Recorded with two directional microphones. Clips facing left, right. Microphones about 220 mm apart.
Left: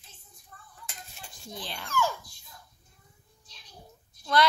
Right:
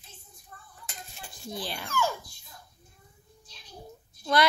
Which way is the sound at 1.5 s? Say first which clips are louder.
Right 2 dB; 10° right (ahead or behind).